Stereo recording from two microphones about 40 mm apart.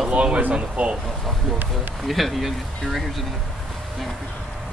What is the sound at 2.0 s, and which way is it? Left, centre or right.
Speech, centre.